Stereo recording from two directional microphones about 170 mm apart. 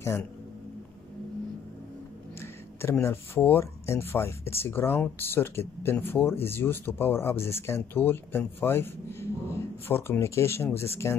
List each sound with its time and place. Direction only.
0.0 s speech: 15° left (ahead or behind)
2.4 s speech: 15° left (ahead or behind)